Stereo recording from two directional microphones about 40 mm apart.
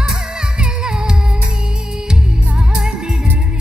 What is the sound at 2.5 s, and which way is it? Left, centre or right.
Music, centre.